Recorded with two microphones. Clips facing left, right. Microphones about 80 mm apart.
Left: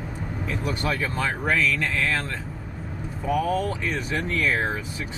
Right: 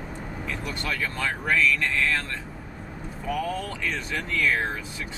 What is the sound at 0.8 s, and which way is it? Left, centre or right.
Speech, centre.